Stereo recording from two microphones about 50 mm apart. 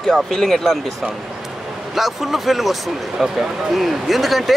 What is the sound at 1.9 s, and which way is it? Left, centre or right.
Speech, centre.